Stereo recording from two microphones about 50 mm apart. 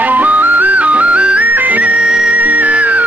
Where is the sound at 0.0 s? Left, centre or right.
Right.